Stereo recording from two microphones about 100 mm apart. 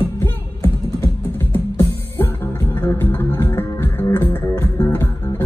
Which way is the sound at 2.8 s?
20° left (ahead or behind).